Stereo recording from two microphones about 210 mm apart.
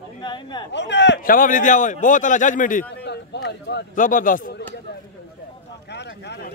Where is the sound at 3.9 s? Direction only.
40° left (ahead or behind).